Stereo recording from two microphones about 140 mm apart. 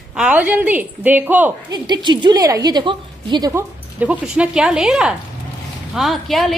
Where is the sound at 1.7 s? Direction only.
30° right (ahead or behind).